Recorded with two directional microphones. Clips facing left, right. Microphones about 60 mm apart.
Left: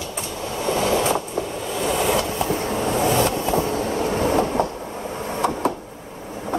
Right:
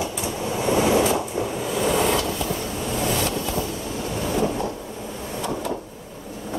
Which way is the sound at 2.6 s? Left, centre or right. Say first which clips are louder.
Left 5 dB; left.